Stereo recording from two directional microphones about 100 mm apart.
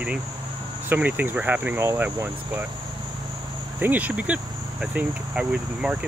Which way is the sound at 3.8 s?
20° right (ahead or behind).